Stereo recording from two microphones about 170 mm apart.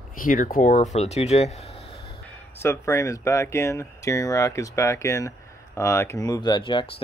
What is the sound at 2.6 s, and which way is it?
Speech, 15° left (ahead or behind).